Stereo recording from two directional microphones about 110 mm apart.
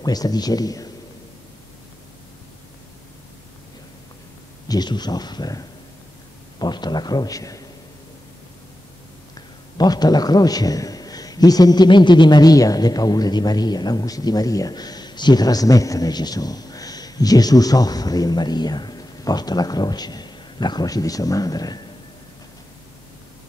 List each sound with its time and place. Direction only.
0.0 s speech: 35° left (ahead or behind)
4.6 s speech: 40° left (ahead or behind)
9.3 s a man's voice: 40° left (ahead or behind)